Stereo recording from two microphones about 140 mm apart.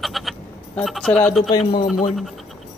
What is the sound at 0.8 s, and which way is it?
Speech, 5° left (ahead or behind).